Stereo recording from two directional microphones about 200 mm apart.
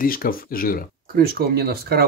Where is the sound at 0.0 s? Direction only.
45° left (ahead or behind).